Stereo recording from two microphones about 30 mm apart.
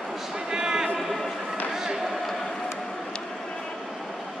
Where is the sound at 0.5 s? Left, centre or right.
Right.